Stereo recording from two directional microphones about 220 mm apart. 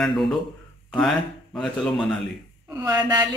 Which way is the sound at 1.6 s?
Centre (ahead or behind).